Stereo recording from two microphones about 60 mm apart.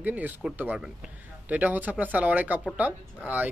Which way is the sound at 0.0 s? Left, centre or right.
Right.